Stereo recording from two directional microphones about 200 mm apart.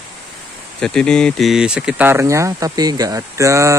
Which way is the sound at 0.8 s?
5° left (ahead or behind).